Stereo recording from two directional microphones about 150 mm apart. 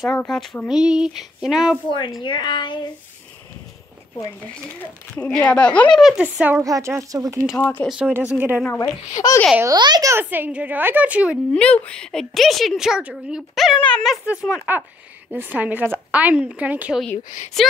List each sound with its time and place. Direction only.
0.3 s a woman's voice: centre (ahead or behind)
1.9 s speech: 30° left (ahead or behind)
5.1 s speech: 5° left (ahead or behind)
5.9 s a woman's voice: 5° right (ahead or behind); by 7.4 s 25° right (ahead or behind)
7.5 s speech: 15° left (ahead or behind)
7.9 s a woman's voice: 5° right (ahead or behind)
8.6 s a child's voice: 15° left (ahead or behind)
9.6 s speech: 25° right (ahead or behind)
10.1 s a woman's voice: 10° right (ahead or behind)
11.5 s a woman's voice: 5° left (ahead or behind)
14.2 s a woman's voice: 5° right (ahead or behind)